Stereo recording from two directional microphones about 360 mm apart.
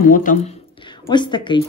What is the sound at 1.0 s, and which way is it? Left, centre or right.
Speech, centre.